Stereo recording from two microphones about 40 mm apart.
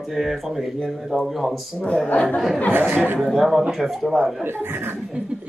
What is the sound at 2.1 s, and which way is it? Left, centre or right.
Speech, left.